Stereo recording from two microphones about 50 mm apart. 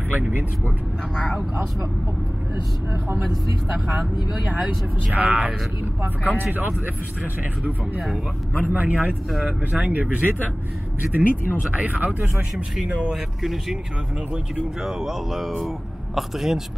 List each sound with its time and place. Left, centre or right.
1.1 s speech: centre
3.8 s speech: centre
5.1 s speech: right
8.6 s speech: right
13.1 s speech: centre